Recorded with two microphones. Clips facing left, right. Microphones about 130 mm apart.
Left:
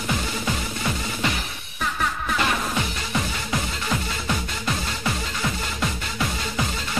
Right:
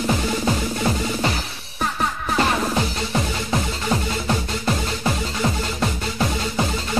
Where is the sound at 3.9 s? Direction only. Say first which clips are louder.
Right 5 dB; 35° right (ahead or behind).